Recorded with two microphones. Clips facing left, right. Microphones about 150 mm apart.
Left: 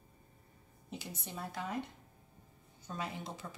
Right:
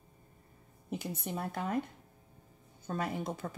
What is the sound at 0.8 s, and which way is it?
Speech, 55° right (ahead or behind).